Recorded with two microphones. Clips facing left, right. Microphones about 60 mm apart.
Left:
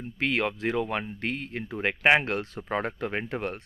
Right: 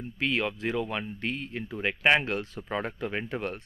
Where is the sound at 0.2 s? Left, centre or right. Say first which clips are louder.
Left 2 dB; left.